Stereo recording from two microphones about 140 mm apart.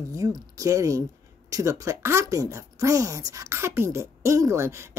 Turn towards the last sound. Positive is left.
turn(degrees=-20)  # may be behind; listen again after turning